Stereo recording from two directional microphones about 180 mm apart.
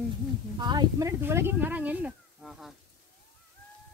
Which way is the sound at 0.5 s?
25° right (ahead or behind).